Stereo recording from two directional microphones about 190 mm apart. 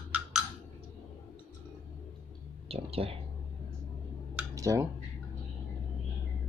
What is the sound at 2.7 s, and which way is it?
Speech, 30° right (ahead or behind).